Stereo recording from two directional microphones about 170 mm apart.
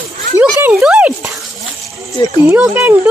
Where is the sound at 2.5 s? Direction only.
10° right (ahead or behind).